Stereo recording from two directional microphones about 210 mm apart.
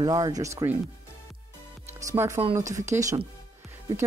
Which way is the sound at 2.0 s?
15° right (ahead or behind).